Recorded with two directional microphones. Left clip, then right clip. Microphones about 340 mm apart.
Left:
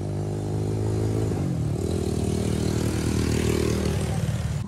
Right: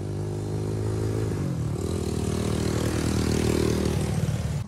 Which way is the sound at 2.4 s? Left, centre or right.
Right.